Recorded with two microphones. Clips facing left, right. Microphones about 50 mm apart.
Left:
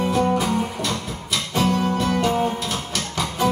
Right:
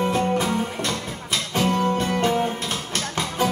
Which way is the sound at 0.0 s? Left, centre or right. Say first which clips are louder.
Left 1 dB; right.